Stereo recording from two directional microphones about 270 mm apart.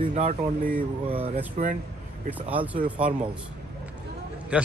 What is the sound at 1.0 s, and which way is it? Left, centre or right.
Speech, right.